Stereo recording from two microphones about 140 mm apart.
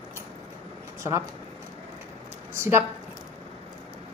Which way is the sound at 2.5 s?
20° right (ahead or behind).